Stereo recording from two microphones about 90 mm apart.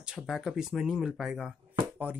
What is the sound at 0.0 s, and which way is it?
Speech, 5° right (ahead or behind).